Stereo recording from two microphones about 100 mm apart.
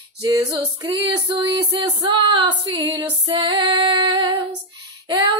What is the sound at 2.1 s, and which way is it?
Female singing, 60° right (ahead or behind).